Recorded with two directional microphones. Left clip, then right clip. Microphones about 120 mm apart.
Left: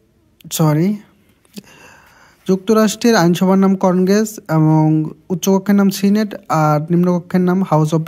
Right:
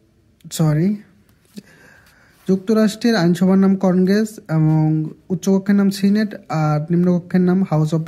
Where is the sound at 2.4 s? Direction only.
40° left (ahead or behind).